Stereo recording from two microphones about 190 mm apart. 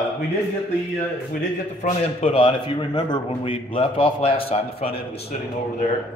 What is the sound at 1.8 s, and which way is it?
A man's voice, 35° left (ahead or behind).